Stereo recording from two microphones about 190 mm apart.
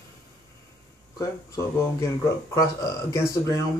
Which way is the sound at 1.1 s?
15° left (ahead or behind).